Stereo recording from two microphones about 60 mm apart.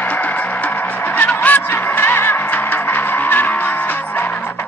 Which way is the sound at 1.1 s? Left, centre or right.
Left.